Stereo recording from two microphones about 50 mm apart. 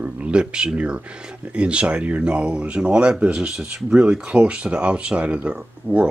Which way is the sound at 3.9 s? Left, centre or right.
Right.